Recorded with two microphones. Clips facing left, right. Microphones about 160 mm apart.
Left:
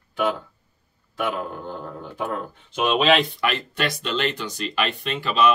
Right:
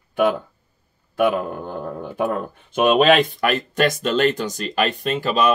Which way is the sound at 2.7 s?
50° right (ahead or behind).